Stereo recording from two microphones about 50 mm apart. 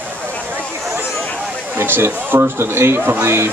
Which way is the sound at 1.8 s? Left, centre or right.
Right.